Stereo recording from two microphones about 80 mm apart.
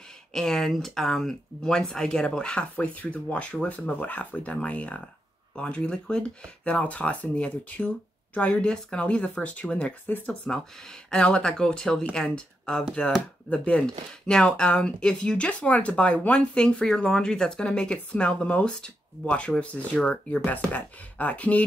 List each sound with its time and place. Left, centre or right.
0.3 s speech: centre